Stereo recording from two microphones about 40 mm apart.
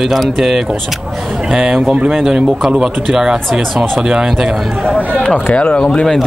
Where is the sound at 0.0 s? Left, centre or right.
Centre.